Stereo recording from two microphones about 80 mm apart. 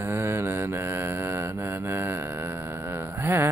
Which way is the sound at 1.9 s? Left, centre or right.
Right.